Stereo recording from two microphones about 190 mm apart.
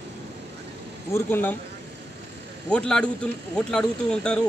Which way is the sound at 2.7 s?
5° left (ahead or behind).